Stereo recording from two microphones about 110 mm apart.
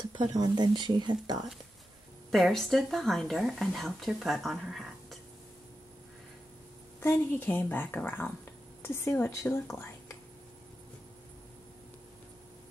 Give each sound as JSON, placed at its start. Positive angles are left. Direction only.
{"t": 0.0, "sound": "speech", "side_deg": -45}
{"t": 2.3, "sound": "speech", "side_deg": 0}
{"t": 7.0, "sound": "a woman's voice", "side_deg": 20}